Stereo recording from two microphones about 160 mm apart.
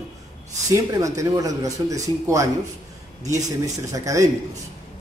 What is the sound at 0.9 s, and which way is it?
A man's voice, 20° right (ahead or behind).